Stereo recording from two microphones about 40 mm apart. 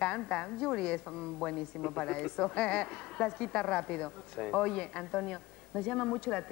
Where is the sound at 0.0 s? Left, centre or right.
Left.